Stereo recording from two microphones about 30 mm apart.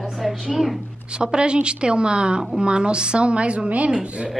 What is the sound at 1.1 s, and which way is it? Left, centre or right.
A woman's voice, right.